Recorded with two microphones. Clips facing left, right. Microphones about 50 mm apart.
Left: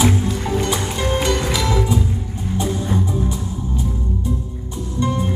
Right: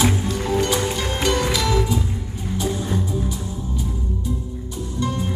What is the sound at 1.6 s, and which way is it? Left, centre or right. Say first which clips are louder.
Music: left 1 dB; left.